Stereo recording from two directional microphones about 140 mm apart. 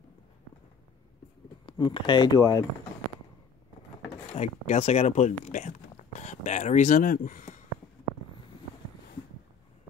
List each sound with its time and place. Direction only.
1.7 s speech: 35° left (ahead or behind)
4.3 s speech: 50° left (ahead or behind); by 7.5 s 70° left (ahead or behind)